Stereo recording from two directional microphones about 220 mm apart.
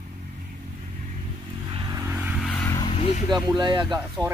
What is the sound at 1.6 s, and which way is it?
Vehicle, 20° right (ahead or behind).